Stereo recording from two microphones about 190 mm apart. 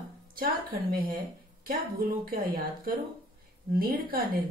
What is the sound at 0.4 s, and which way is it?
Speech, 50° right (ahead or behind).